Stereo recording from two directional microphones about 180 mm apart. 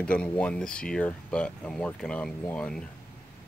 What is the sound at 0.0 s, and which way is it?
Speech, 5° left (ahead or behind).